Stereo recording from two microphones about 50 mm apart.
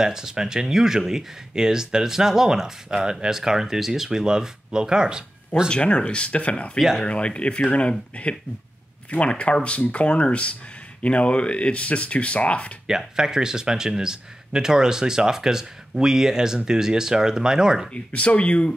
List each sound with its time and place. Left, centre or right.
0.0 s speech: centre
5.7 s speech: left
9.1 s speech: left
12.8 s speech: centre
17.9 s speech: left